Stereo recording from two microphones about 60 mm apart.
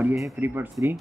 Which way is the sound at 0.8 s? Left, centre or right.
Right.